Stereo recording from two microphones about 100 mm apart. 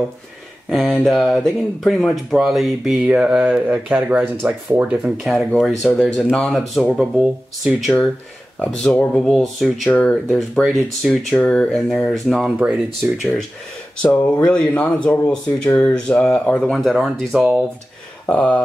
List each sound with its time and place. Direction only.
0.7 s speech: centre (ahead or behind); by 4.8 s 20° right (ahead or behind)
4.8 s speech: 5° right (ahead or behind)
5.5 s speech: 5° left (ahead or behind)
8.5 s speech: 10° left (ahead or behind)
14.0 s speech: 15° left (ahead or behind)
16.8 s speech: 5° right (ahead or behind)
18.2 s speech: 15° left (ahead or behind)